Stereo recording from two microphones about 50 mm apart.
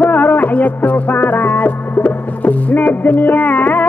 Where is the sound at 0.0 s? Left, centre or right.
Left.